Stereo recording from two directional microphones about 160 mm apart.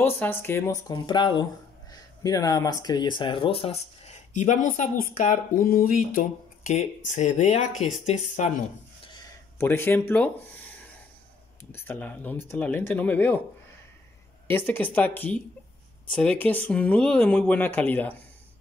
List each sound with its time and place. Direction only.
0.0 s speech: 15° left (ahead or behind); by 8.6 s 45° left (ahead or behind)
9.6 s speech: 15° left (ahead or behind)
14.5 s speech: 15° left (ahead or behind)